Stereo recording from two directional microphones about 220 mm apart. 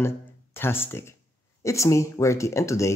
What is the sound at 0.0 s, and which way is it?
Speech, 10° left (ahead or behind).